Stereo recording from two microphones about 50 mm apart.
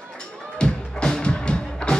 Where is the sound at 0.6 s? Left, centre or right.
Centre.